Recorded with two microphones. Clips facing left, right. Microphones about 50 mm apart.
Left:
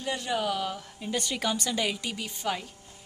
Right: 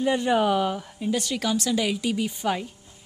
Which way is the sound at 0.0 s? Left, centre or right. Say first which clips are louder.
Right 8 dB; centre.